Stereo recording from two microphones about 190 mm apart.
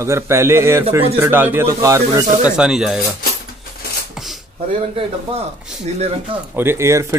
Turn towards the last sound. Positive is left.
turn(degrees=-15)  # may be behind; listen again after turning